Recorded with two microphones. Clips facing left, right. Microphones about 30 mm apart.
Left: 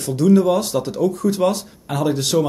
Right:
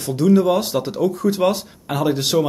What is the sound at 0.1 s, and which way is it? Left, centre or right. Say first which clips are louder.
Speech: left 1 dB; centre.